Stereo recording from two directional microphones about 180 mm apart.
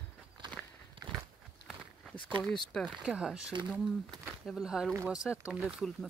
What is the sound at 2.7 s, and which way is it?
Speech, centre (ahead or behind).